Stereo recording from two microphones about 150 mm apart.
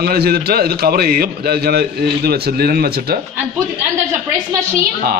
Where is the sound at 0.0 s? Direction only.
90° right.